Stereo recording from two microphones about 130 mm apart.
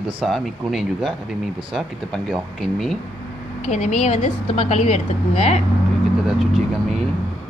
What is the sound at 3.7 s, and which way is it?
A woman's voice, 60° left (ahead or behind).